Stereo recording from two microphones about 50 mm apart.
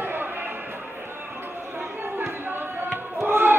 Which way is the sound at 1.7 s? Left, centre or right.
Right.